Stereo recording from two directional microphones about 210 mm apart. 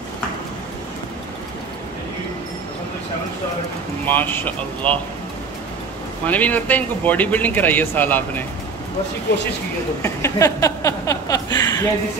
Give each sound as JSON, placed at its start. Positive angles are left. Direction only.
{"t": 4.0, "sound": "speech", "side_deg": 10}
{"t": 6.2, "sound": "speech", "side_deg": 5}
{"t": 10.0, "sound": "speech", "side_deg": 15}